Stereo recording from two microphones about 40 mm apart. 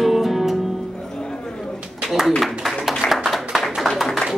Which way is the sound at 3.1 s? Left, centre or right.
Centre.